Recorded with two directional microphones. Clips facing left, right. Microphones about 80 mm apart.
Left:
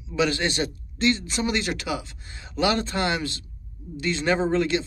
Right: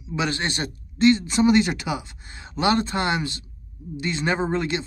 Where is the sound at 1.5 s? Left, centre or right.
Right.